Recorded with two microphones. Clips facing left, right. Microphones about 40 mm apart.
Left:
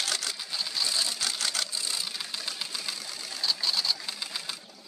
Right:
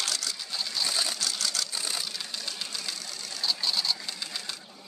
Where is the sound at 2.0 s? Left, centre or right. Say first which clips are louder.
Left 1 dB; centre.